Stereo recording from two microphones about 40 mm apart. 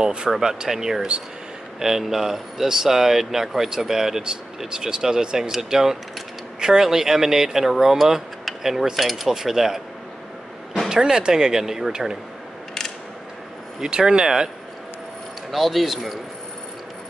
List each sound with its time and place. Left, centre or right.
0.0 s speech: right
8.6 s cutlery: centre
9.3 s speech: centre
10.9 s speech: centre
13.7 s speech: centre
15.5 s cutlery: centre